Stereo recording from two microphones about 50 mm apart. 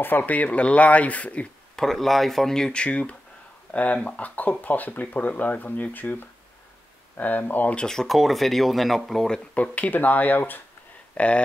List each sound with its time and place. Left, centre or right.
0.2 s speech: left
1.8 s speech: centre; by 7.7 s left
7.7 s speech: centre
9.5 s speech: left
11.1 s speech: left